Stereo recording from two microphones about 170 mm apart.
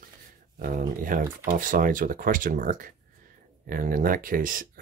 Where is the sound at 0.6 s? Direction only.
55° right (ahead or behind).